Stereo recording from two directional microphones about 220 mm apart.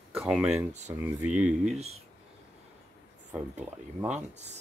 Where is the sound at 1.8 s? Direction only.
30° right (ahead or behind).